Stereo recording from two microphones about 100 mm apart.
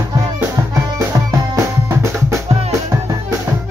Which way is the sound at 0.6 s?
35° right (ahead or behind).